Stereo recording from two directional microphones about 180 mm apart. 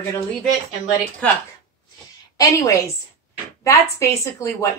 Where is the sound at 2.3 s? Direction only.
20° left (ahead or behind).